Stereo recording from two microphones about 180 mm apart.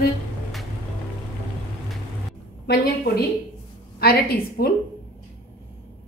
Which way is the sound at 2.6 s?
60° left (ahead or behind).